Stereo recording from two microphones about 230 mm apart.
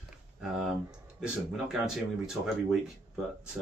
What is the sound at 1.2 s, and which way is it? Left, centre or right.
Speech, centre.